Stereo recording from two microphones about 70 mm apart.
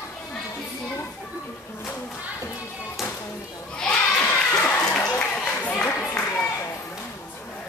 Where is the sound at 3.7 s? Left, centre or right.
Centre.